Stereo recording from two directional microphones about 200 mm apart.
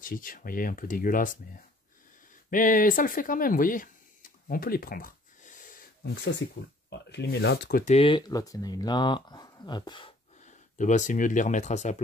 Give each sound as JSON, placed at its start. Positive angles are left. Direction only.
{"t": 0.0, "sound": "speech", "side_deg": 45}
{"t": 2.5, "sound": "a sound", "side_deg": 40}
{"t": 6.2, "sound": "speech", "side_deg": 60}
{"t": 7.8, "sound": "speech", "side_deg": 30}